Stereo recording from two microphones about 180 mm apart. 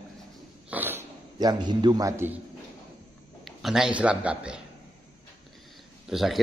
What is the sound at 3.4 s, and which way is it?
A man's voice, centre (ahead or behind).